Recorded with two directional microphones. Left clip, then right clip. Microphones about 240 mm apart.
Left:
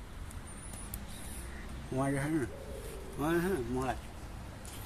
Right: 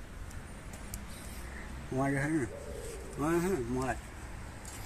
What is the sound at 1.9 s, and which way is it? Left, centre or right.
A man's voice, centre.